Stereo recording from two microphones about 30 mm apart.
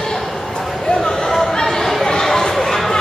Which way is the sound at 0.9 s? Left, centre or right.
Centre.